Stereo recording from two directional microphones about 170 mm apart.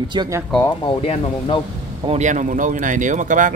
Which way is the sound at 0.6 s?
30° left (ahead or behind).